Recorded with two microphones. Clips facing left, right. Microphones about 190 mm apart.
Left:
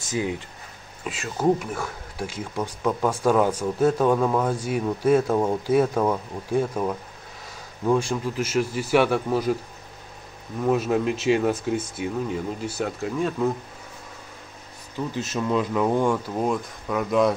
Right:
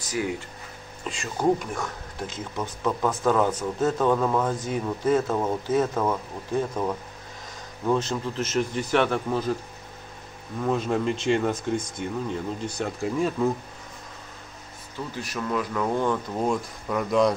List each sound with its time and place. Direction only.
1.0 s speech: 5° left (ahead or behind)
10.6 s speech: 10° left (ahead or behind)
15.1 s speech: 25° left (ahead or behind)
16.4 s speech: centre (ahead or behind)